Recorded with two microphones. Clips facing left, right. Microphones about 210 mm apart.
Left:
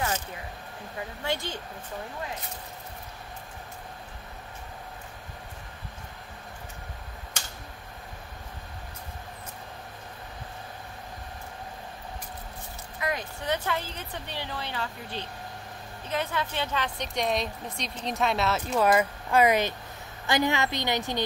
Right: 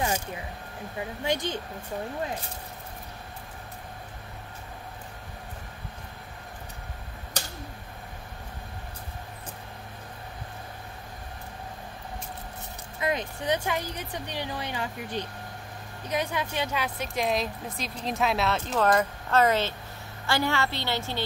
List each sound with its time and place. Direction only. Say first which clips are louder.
1.2 s a woman's voice: right 3 dB; 15° right (ahead or behind)
13.0 s a woman's voice: right 3 dB; 20° right (ahead or behind); by 21.2 s 15° left (ahead or behind)